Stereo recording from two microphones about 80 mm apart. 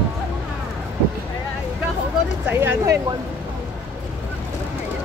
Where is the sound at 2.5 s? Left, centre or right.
Right.